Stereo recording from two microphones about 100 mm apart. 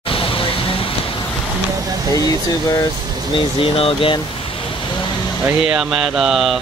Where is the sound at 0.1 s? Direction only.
65° left (ahead or behind).